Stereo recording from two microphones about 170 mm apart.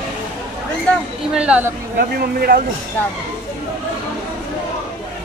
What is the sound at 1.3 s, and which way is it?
Speech, 5° right (ahead or behind).